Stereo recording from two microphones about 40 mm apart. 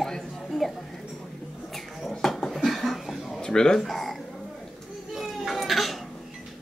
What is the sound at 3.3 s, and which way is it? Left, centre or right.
Speech, centre.